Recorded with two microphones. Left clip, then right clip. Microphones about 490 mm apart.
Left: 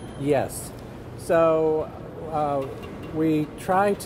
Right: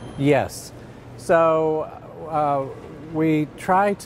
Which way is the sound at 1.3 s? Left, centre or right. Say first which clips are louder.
Right 2 dB; right.